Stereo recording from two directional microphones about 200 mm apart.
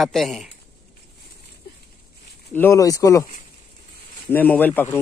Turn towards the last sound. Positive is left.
turn(degrees=10)  # may be behind; listen again after turning